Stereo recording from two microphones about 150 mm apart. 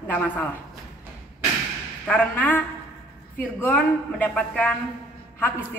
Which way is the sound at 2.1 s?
10° left (ahead or behind).